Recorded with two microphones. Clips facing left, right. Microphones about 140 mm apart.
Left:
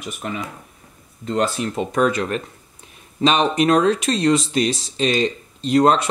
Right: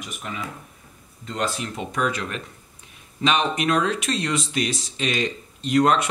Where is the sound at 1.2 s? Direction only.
40° left (ahead or behind).